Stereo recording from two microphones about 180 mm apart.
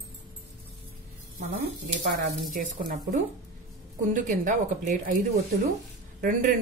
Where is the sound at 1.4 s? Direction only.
65° right (ahead or behind).